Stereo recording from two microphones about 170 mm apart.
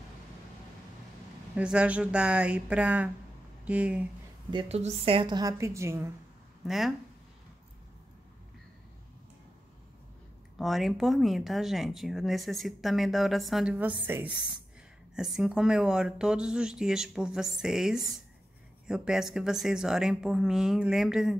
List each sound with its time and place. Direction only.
1.5 s speech: 5° right (ahead or behind)
4.5 s a woman's voice: 35° right (ahead or behind); by 6.1 s 15° right (ahead or behind)
6.6 s speech: centre (ahead or behind)
10.6 s speech: centre (ahead or behind)